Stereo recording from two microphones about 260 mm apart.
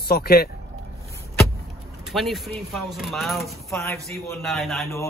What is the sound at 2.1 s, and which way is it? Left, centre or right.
A man's voice, centre.